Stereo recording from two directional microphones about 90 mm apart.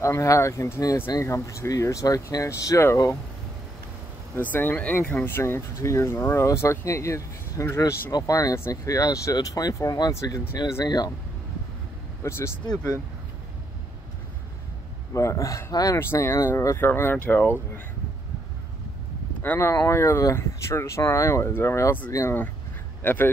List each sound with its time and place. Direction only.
0.0 s speech: 35° left (ahead or behind)
4.4 s speech: 20° left (ahead or behind)
8.2 s speech: 40° left (ahead or behind)
12.2 s speech: 30° left (ahead or behind)
15.1 s speech: 35° left (ahead or behind)
16.0 s speech: 30° left (ahead or behind)
19.4 s speech: 20° left (ahead or behind)
19.7 s speech: 30° left (ahead or behind)
23.0 s speech: 20° left (ahead or behind)